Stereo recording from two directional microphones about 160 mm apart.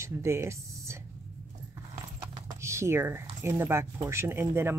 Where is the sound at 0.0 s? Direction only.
15° right (ahead or behind).